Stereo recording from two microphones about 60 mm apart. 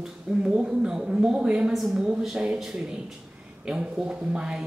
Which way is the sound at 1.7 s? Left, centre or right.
Centre.